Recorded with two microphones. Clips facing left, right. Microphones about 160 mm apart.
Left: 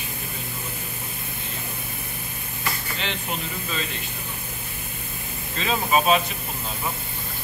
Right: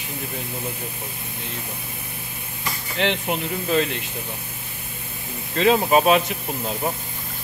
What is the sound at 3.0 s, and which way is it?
Speech, 70° right (ahead or behind).